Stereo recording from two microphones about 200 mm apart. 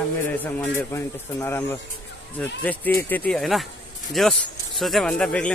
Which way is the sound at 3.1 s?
5° left (ahead or behind).